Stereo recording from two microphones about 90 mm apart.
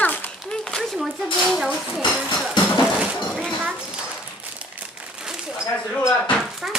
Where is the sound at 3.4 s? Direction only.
15° right (ahead or behind).